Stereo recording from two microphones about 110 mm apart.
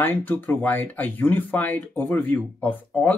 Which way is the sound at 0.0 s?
15° left (ahead or behind).